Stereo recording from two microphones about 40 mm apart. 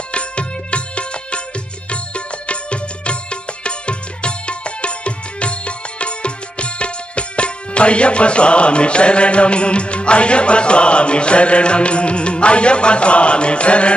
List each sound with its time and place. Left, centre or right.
0.1 s music: left